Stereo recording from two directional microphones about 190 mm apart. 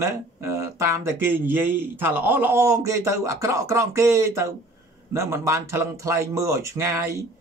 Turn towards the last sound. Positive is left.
turn(degrees=-15)  # may be behind; listen again after turning